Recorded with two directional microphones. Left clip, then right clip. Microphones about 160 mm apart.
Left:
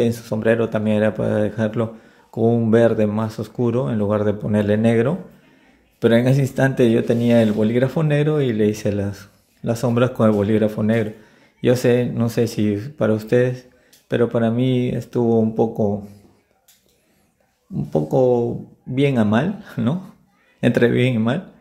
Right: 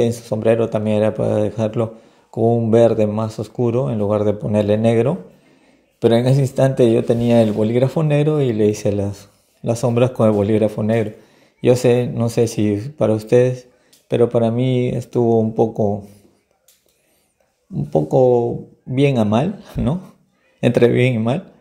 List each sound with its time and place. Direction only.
0.0 s speech: 10° right (ahead or behind)
17.7 s speech: 10° right (ahead or behind)